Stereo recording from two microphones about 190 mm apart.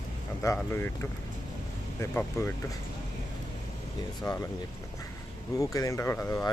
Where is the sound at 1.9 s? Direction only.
15° left (ahead or behind).